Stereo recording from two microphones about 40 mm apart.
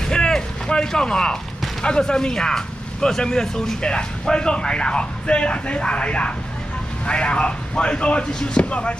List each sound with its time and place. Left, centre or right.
0.0 s a sound: centre
1.8 s speech: centre
3.8 s speech: left